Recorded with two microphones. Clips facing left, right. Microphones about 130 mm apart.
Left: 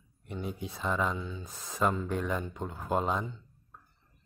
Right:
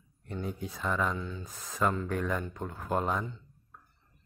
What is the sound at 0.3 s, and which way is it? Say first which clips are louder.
Speech: right 1 dB; 20° left (ahead or behind).